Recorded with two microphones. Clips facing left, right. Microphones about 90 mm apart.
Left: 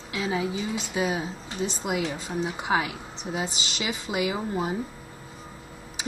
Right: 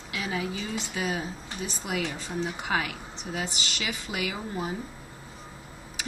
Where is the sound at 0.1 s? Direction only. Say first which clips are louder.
Left 4 dB; 20° left (ahead or behind).